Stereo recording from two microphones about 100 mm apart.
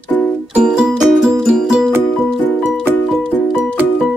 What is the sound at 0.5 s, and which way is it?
Music, 10° right (ahead or behind).